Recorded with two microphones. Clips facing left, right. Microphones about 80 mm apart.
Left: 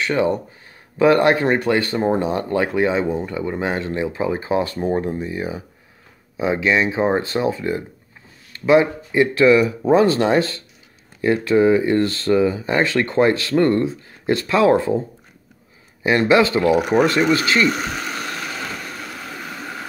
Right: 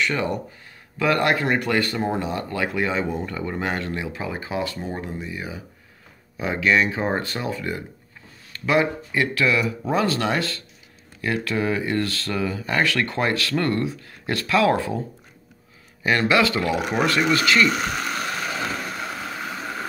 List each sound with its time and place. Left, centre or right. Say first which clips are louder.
0.0 s speech: left 5 dB; left
3.2 s speech: left 4 dB; centre; by 5.6 s left
6.3 s speech: left 2 dB; left
16.0 s speech: left 4 dB; left